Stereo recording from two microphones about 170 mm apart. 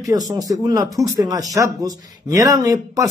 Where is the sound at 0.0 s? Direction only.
20° right (ahead or behind).